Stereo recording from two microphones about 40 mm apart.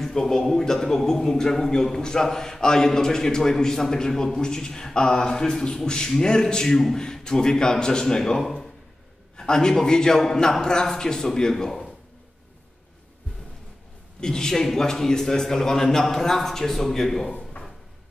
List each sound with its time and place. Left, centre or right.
0.0 s a man's voice: centre
9.4 s a man's voice: centre
14.2 s a man's voice: centre
17.3 s drawer open or close: left